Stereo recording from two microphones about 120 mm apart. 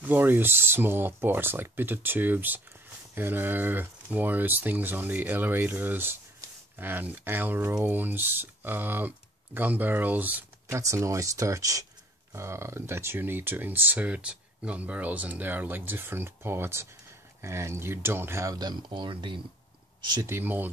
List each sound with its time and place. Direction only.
0.0 s speech: 15° right (ahead or behind)
10.7 s speech: 25° right (ahead or behind); by 19.4 s 40° right (ahead or behind)
20.1 s speech: 25° right (ahead or behind)